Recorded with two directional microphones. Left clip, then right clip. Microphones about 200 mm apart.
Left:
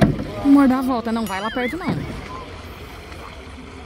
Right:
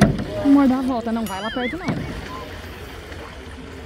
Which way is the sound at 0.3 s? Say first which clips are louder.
Left 2 dB; 10° left (ahead or behind).